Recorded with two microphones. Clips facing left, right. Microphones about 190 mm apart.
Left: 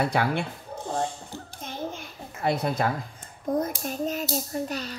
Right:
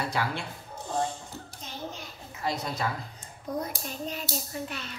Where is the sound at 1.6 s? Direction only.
55° left (ahead or behind).